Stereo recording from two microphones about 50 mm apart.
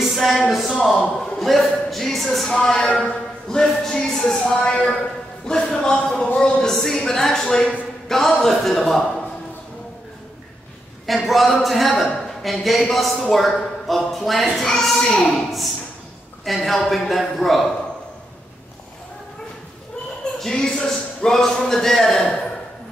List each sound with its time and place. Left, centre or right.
0.1 s speech: centre
0.7 s speech: centre
1.4 s speech: centre
4.6 s speech: left; by 9.0 s centre
11.2 s speech: centre
20.3 s speech: centre